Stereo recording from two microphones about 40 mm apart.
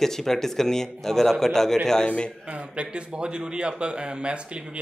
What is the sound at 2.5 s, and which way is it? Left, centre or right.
A man's voice, right.